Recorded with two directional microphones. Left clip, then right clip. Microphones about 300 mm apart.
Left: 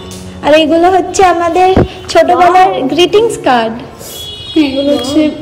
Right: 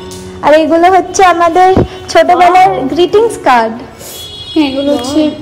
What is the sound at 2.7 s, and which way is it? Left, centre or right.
Speech, centre.